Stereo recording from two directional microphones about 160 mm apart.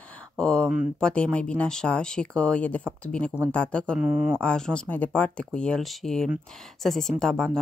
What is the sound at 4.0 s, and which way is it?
Speech, 10° right (ahead or behind).